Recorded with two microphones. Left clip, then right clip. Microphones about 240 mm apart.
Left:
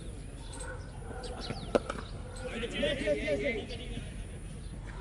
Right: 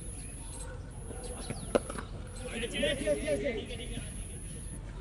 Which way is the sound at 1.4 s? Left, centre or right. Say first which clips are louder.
Even; centre.